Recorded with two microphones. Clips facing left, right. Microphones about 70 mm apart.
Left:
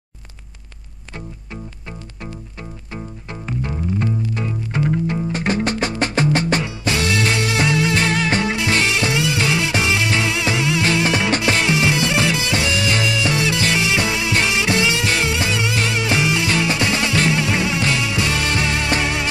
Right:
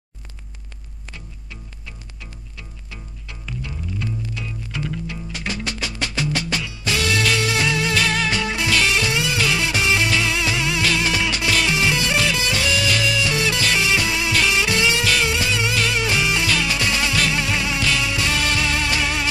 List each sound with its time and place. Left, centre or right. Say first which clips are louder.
2.9 s music: left 10 dB; left